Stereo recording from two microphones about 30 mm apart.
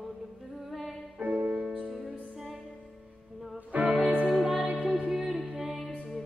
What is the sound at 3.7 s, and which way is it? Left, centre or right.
Music, right.